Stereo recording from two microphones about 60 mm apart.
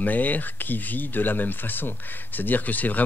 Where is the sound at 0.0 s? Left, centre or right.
Left.